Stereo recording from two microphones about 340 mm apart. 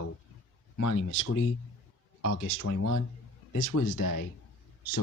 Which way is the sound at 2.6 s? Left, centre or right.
Left.